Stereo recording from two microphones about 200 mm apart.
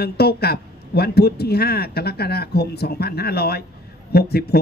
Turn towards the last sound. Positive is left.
turn(degrees=50)  # may be behind; listen again after turning